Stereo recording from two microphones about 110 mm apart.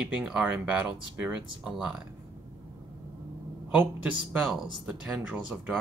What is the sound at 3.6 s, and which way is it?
Speech, 15° right (ahead or behind).